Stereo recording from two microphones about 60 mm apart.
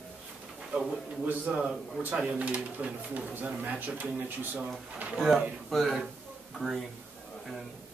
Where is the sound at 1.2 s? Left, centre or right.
Right.